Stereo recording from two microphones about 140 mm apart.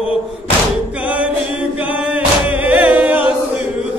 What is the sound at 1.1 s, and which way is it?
Music, 10° right (ahead or behind).